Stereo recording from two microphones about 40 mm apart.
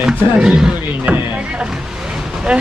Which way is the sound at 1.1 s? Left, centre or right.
Right.